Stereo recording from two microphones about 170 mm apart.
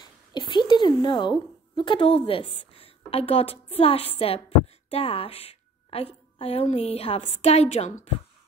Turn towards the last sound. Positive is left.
turn(degrees=40)  # may be behind; listen again after turning